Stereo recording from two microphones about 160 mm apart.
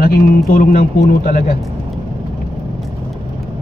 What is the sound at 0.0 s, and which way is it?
A man's voice, 70° left (ahead or behind).